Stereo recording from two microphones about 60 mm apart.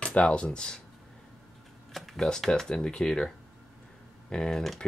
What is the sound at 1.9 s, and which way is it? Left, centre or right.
Speech, centre.